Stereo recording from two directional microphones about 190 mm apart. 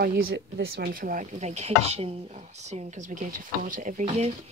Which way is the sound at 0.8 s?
50° right (ahead or behind).